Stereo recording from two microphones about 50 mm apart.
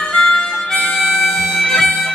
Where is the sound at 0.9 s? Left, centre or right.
Centre.